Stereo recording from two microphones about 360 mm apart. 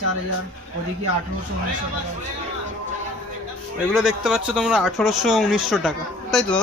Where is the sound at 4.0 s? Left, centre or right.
Centre.